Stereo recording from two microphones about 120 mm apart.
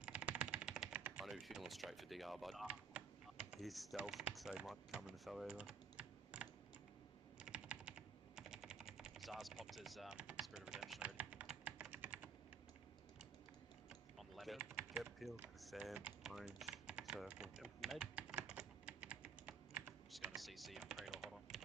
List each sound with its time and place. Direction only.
0.0 s typing: 10° right (ahead or behind)
0.9 s a sound: 15° right (ahead or behind)
1.2 s speech: centre (ahead or behind)
2.6 s typing: 10° right (ahead or behind)
3.9 s speech: 5° right (ahead or behind)
5.6 s computer keyboard: 10° right (ahead or behind)
7.4 s typing: 10° right (ahead or behind)
10.1 s speech: 10° right (ahead or behind)
10.4 s typing: 5° right (ahead or behind)
14.1 s typing: centre (ahead or behind)
15.6 s speech: centre (ahead or behind)
18.1 s typing: 10° right (ahead or behind)
20.1 s typing: centre (ahead or behind)